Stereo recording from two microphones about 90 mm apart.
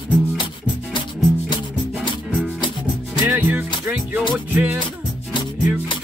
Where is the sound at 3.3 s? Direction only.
20° right (ahead or behind).